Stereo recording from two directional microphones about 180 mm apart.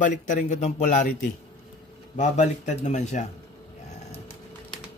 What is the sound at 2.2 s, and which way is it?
Speech, 40° left (ahead or behind).